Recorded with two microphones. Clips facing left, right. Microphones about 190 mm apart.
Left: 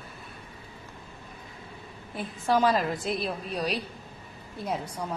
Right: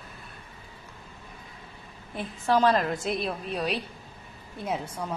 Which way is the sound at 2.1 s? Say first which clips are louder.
Right 1 dB; 10° left (ahead or behind).